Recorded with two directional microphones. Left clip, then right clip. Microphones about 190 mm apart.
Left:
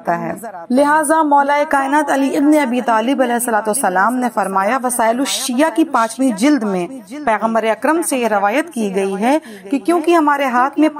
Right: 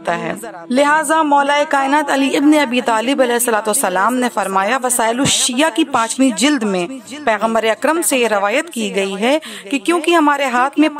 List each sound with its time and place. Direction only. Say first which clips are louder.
0.0 s a woman's voice: even; 45° right (ahead or behind)
0.7 s speech: even; 15° right (ahead or behind)
1.0 s a woman's voice: left 1 dB; 30° right (ahead or behind)